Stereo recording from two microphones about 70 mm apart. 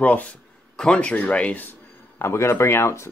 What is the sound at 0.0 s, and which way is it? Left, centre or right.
Speech, left.